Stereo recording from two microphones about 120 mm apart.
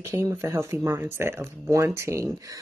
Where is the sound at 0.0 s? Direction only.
25° right (ahead or behind).